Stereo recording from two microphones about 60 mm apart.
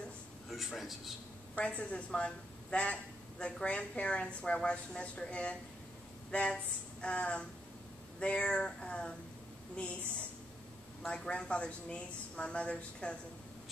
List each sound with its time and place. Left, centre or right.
0.5 s a man's voice: centre
1.5 s a woman's voice: left
11.1 s a woman's voice: centre